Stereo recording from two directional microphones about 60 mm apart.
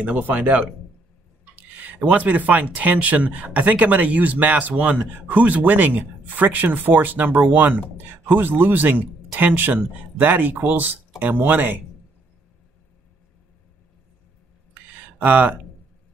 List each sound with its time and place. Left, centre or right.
0.0 s speech: right
15.1 s speech: right